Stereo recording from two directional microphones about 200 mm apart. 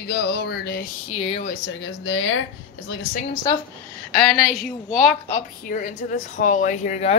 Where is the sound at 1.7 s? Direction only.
65° left (ahead or behind).